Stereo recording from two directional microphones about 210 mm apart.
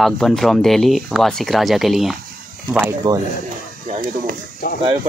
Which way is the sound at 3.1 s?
20° right (ahead or behind).